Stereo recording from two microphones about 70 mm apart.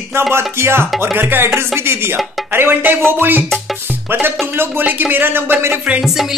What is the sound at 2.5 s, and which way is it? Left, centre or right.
Speech, right.